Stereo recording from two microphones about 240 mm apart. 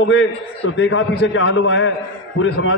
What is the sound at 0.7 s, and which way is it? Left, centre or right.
A man's voice, left.